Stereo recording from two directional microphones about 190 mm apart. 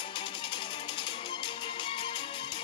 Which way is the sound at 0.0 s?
25° left (ahead or behind).